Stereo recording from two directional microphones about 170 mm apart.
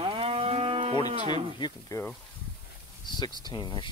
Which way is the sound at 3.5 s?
25° left (ahead or behind).